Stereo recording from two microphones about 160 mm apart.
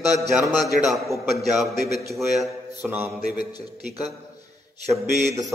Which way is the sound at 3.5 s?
40° right (ahead or behind).